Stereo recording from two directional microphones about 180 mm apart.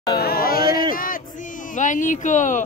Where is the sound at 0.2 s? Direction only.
55° left (ahead or behind).